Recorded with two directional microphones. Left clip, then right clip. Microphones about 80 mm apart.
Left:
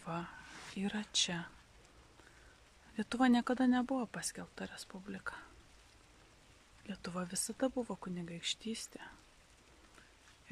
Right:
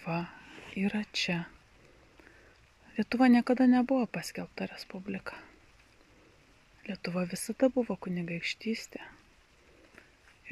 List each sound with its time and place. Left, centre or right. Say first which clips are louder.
0.0 s a sound: right 7 dB; centre
0.7 s speech: right 3 dB; centre
3.0 s speech: right 7 dB; centre
4.8 s speech: right 8 dB; right
5.1 s speech: right 3 dB; centre
6.9 s speech: right 8 dB; centre